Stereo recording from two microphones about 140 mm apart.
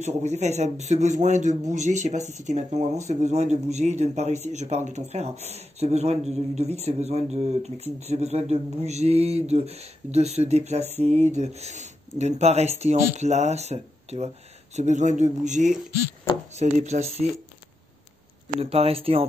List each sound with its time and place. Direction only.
0.0 s speech: 55° right (ahead or behind)
18.6 s speech: 45° right (ahead or behind)